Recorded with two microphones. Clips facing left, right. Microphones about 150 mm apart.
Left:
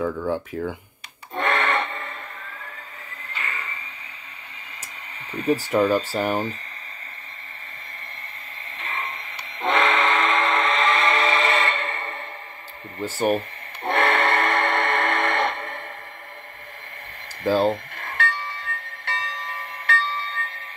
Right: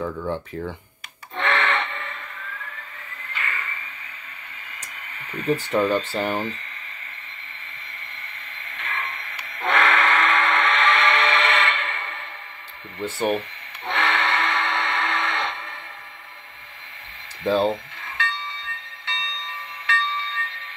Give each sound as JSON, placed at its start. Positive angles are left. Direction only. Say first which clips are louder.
{"t": 0.0, "sound": "speech", "louder": "left 3 dB", "side_deg": 10}
{"t": 1.3, "sound": "music", "louder": "left 1 dB", "side_deg": 45}
{"t": 3.3, "sound": "music", "louder": "right 1 dB", "side_deg": 35}
{"t": 5.7, "sound": "speech", "louder": "left 1 dB", "side_deg": 5}
{"t": 8.7, "sound": "train", "louder": "even", "side_deg": 30}
{"t": 13.0, "sound": "speech", "louder": "left 1 dB", "side_deg": 0}
{"t": 13.8, "sound": "train", "louder": "left 4 dB", "side_deg": 50}
{"t": 17.5, "sound": "speech", "louder": "left 1 dB", "side_deg": 5}
{"t": 17.9, "sound": "music", "louder": "left 3 dB", "side_deg": 55}